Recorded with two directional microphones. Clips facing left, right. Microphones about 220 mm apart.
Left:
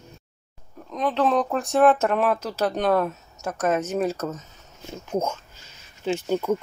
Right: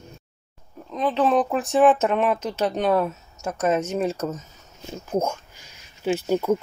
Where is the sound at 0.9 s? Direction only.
Centre (ahead or behind).